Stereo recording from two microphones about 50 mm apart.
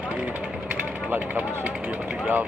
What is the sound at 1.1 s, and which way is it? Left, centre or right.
Speech, right.